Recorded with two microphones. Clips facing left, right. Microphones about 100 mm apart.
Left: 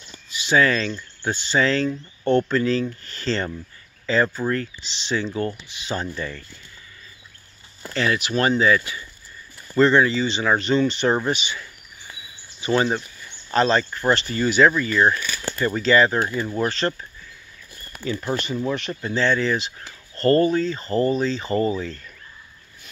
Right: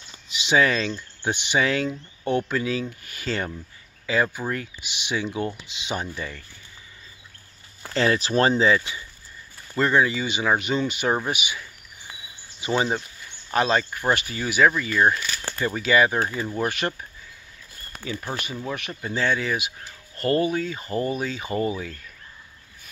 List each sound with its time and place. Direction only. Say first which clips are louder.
0.3 s speech: left 2 dB; 20° right (ahead or behind)
7.9 s speech: right 1 dB; 35° right (ahead or behind)
9.8 s speech: left 4 dB; 10° right (ahead or behind)
18.0 s speech: left 6 dB; 10° right (ahead or behind)